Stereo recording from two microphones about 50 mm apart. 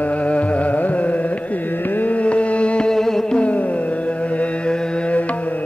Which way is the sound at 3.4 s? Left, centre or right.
Left.